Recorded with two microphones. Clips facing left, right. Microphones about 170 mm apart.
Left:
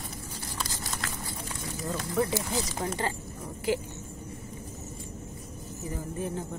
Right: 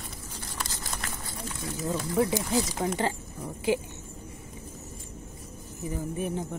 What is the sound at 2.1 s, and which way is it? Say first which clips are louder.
Speech: right 3 dB; 20° right (ahead or behind).